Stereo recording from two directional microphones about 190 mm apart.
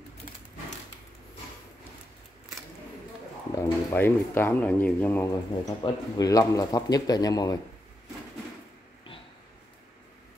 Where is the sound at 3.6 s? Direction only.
10° left (ahead or behind).